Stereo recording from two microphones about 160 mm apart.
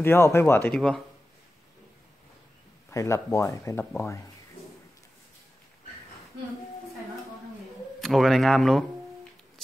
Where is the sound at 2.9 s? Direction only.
20° left (ahead or behind).